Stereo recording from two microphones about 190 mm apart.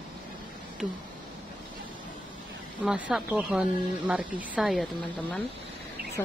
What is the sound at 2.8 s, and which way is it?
Speech, 5° right (ahead or behind).